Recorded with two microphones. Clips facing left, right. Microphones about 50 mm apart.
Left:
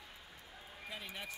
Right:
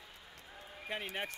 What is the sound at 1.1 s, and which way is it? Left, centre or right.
Speech, right.